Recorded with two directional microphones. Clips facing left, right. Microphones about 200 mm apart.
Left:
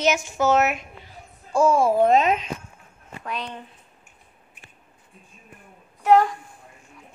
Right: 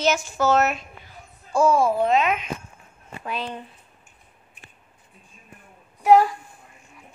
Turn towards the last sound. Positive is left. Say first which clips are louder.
# right 1 dB
turn(degrees=-10)  # may be behind; listen again after turning